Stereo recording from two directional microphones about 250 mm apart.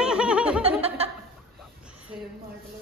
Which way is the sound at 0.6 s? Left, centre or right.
Right.